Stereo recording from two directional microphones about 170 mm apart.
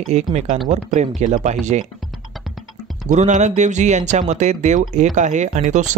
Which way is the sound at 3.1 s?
45° right (ahead or behind).